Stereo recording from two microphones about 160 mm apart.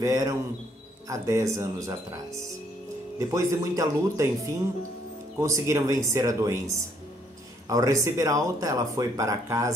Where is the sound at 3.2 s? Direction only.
20° right (ahead or behind).